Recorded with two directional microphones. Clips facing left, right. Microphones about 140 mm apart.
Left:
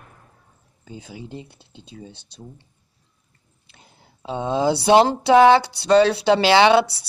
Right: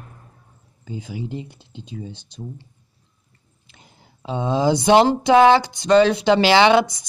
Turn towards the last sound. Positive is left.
turn(degrees=35)  # may be behind; listen again after turning